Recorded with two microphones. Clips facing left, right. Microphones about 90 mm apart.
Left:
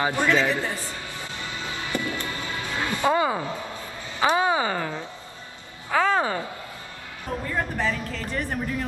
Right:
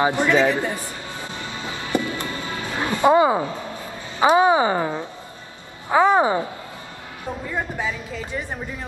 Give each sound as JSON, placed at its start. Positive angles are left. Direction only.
{"t": 0.0, "sound": "music", "side_deg": -20}
{"t": 4.2, "sound": "speech", "side_deg": -20}
{"t": 7.4, "sound": "speech", "side_deg": -10}